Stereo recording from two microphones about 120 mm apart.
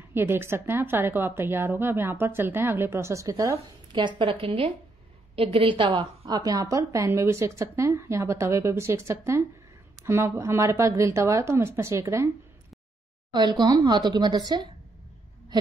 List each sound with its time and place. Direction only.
0.1 s a woman's voice: 20° right (ahead or behind)
3.5 s a woman's voice: 40° right (ahead or behind); by 12.3 s 25° right (ahead or behind)
13.3 s speech: 35° right (ahead or behind)